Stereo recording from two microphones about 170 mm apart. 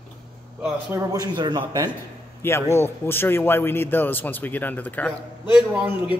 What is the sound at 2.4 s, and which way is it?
A man's voice, 15° left (ahead or behind).